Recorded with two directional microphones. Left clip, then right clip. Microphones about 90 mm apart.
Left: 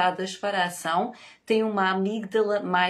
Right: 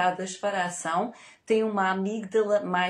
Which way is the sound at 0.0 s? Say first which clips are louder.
Left 1 dB; 10° left (ahead or behind).